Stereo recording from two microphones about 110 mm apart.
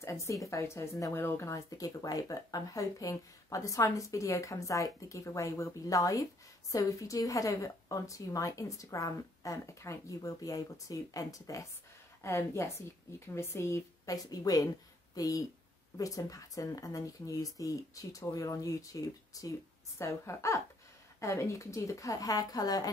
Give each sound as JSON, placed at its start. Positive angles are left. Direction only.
{"t": 0.0, "sound": "a woman's voice", "side_deg": 25}